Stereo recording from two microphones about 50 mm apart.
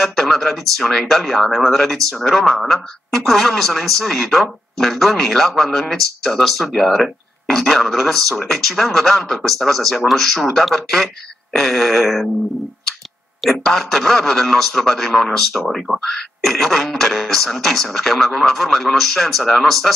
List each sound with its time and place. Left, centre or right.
0.0 s speech: centre
13.4 s speech: centre